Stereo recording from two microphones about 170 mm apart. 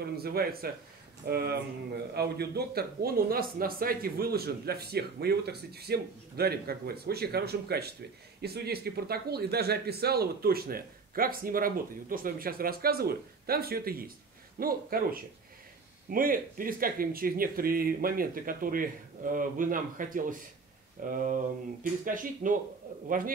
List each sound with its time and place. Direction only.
0.0 s speech: 65° right (ahead or behind)